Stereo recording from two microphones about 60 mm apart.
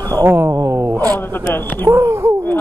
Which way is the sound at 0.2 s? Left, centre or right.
Right.